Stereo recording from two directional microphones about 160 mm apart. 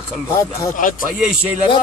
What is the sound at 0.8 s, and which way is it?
Speech, 55° left (ahead or behind).